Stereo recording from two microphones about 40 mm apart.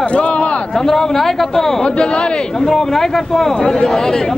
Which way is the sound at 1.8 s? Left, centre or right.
Left.